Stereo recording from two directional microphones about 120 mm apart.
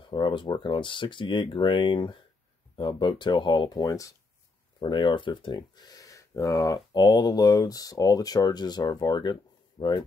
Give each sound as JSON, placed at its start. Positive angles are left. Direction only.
{"t": 0.1, "sound": "speech", "side_deg": 40}
{"t": 4.7, "sound": "speech", "side_deg": 40}